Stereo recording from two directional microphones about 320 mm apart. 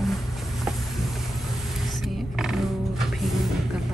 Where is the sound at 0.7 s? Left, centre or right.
Centre.